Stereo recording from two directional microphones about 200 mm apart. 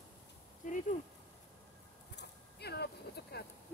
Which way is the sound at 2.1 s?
55° left (ahead or behind).